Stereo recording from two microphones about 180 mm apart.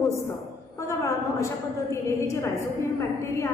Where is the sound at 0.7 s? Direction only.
15° left (ahead or behind).